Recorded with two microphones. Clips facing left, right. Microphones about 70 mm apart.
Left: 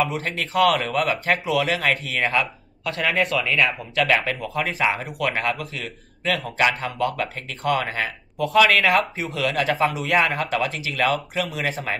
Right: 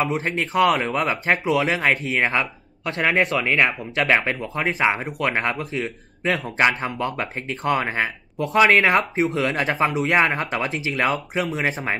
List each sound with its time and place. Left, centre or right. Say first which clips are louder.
0.2 s a man's voice: right 1 dB; right
4.1 s a man's voice: right 1 dB; right